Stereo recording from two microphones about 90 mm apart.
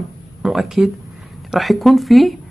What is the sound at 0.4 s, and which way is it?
Speech, 5° right (ahead or behind).